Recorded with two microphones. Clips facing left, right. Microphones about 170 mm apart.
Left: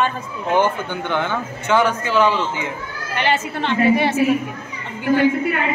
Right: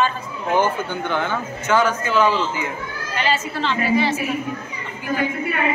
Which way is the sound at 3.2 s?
60° left (ahead or behind).